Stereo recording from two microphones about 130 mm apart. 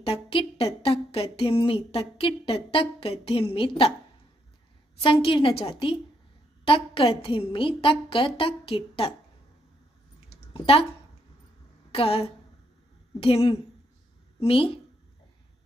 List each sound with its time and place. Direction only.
0.0 s a woman's voice: 45° left (ahead or behind)
5.0 s a woman's voice: 40° left (ahead or behind)
10.3 s a sound: 45° left (ahead or behind)
11.9 s a woman's voice: 50° left (ahead or behind)